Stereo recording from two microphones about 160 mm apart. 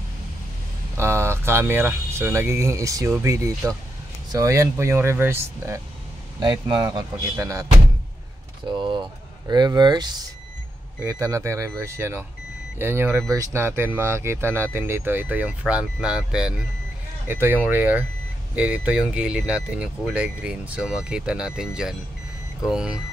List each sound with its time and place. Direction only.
0.9 s speech: 15° right (ahead or behind)
8.7 s speech: 30° right (ahead or behind); by 22.9 s 5° right (ahead or behind)